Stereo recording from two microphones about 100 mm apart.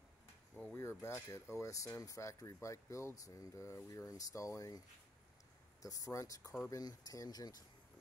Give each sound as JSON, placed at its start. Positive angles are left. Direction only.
{"t": 0.7, "sound": "speech", "side_deg": 25}